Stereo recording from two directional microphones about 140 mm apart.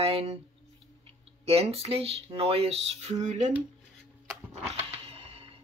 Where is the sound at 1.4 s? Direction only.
45° right (ahead or behind).